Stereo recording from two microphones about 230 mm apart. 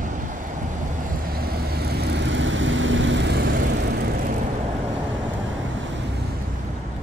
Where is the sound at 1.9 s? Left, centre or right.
Right.